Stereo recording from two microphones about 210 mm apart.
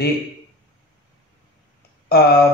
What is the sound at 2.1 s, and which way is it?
Speech, 45° left (ahead or behind).